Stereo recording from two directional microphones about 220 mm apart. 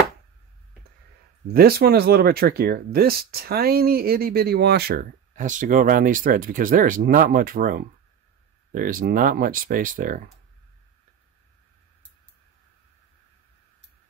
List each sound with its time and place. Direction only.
1.5 s speech: 45° right (ahead or behind)